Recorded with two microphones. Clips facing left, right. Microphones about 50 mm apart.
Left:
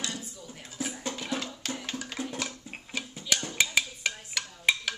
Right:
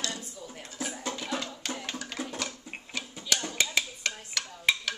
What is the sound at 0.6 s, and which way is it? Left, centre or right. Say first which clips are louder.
Music: left 1 dB; centre.